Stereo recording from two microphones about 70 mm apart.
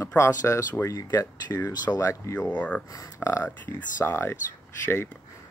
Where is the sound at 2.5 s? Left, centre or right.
Centre.